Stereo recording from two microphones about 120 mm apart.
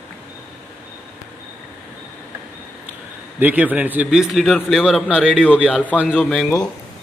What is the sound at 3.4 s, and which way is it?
A man's voice, 15° right (ahead or behind).